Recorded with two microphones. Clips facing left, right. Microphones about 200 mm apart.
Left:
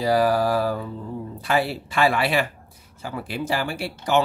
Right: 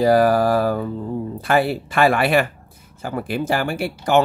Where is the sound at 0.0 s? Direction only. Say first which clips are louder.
Right 5 dB; 50° right (ahead or behind).